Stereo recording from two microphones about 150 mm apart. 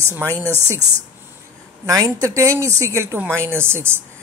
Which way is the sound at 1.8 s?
20° right (ahead or behind).